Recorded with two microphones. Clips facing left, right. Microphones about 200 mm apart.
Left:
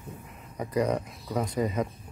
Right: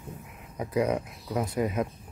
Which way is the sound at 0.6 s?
5° right (ahead or behind).